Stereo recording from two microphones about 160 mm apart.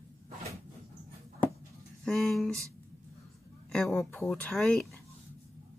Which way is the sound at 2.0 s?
5° left (ahead or behind).